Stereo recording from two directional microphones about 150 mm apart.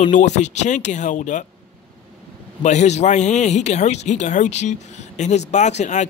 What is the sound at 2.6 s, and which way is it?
Speech, 50° left (ahead or behind).